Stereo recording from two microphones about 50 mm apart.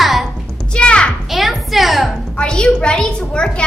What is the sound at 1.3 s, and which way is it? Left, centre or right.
Music, centre.